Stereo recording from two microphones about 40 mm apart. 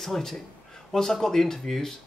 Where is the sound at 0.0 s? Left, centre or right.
Centre.